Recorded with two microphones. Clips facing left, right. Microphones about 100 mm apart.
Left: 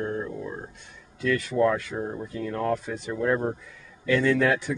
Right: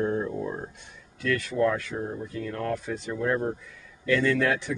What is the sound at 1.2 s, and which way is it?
Speech, 10° left (ahead or behind).